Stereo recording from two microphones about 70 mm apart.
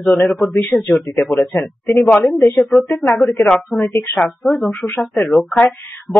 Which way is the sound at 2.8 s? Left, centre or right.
Left.